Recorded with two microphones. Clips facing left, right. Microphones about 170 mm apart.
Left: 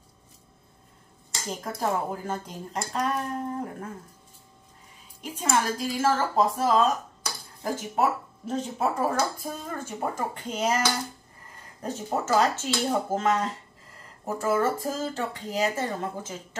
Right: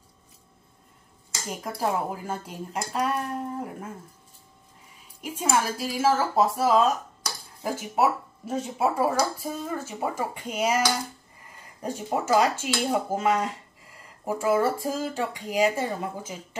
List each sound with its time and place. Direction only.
1.8 s speech: 5° right (ahead or behind)
5.4 s speech: 10° right (ahead or behind)